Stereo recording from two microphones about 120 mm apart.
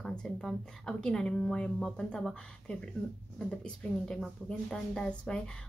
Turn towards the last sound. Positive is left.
turn(degrees=5)  # may be behind; listen again after turning